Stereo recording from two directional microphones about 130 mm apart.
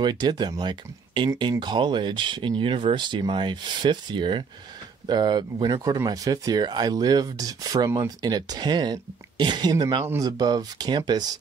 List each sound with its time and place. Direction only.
0.0 s speech: 35° right (ahead or behind)